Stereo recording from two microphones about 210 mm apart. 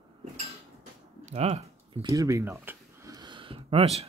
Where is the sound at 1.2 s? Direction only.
30° right (ahead or behind).